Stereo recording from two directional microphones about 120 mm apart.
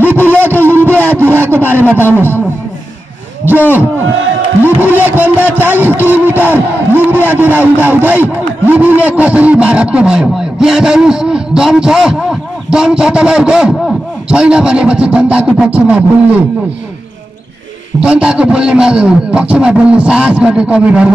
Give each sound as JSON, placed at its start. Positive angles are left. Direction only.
{"t": 0.0, "sound": "a sound", "side_deg": -15}
{"t": 2.1, "sound": "a man's voice", "side_deg": -15}
{"t": 4.7, "sound": "a man's voice", "side_deg": -15}
{"t": 18.0, "sound": "a man's voice", "side_deg": -10}